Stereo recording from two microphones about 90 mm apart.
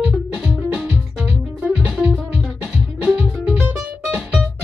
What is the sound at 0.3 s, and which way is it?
Music, 10° right (ahead or behind).